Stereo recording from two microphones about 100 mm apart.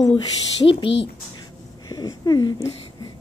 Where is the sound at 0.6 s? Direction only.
65° left (ahead or behind).